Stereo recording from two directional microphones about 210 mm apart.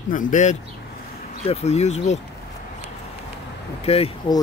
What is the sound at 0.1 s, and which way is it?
Speech, 40° left (ahead or behind).